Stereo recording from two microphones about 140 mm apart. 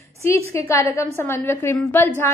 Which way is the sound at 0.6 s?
20° left (ahead or behind).